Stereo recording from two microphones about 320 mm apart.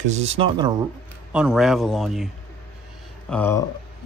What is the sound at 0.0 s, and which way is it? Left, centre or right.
Speech, right.